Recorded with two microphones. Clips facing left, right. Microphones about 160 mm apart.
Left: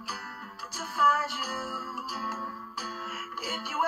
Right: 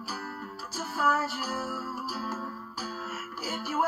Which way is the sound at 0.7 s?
35° right (ahead or behind).